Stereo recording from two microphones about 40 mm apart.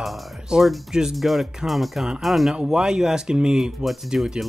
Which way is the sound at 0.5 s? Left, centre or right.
Centre.